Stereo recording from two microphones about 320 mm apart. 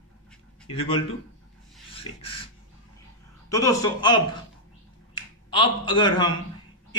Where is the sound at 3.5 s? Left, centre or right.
Centre.